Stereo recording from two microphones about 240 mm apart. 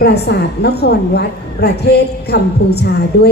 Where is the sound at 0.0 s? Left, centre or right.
Left.